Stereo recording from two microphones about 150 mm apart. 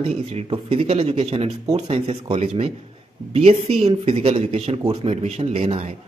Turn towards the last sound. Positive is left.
turn(degrees=-40)  # may be behind; listen again after turning